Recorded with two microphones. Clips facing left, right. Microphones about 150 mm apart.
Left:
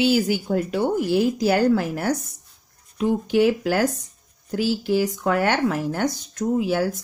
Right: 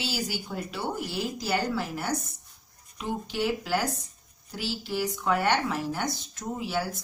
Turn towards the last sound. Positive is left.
turn(degrees=50)  # may be behind; listen again after turning